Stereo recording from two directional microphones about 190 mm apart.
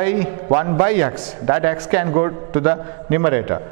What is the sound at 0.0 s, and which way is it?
A man's voice, 15° right (ahead or behind).